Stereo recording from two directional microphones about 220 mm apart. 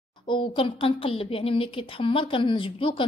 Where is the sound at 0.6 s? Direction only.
25° left (ahead or behind).